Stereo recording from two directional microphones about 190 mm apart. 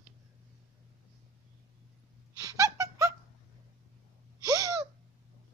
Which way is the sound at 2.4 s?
15° right (ahead or behind).